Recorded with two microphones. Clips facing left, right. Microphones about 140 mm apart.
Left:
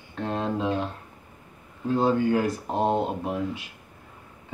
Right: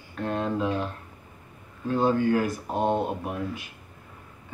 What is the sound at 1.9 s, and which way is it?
Speech, 25° left (ahead or behind).